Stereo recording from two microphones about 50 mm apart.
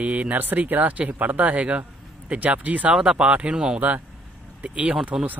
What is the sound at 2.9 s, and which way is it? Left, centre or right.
Speech, centre.